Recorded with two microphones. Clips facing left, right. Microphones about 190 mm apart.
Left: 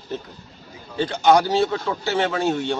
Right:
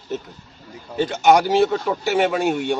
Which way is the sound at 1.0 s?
15° right (ahead or behind).